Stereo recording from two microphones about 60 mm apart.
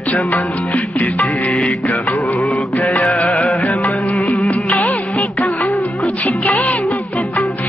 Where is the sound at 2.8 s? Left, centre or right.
Centre.